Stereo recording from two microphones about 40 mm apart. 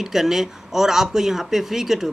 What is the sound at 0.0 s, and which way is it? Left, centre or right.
Speech, centre.